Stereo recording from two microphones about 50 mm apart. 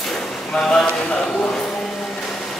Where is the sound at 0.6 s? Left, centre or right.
Centre.